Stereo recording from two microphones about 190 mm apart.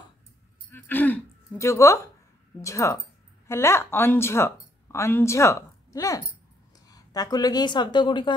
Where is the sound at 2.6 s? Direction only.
15° left (ahead or behind).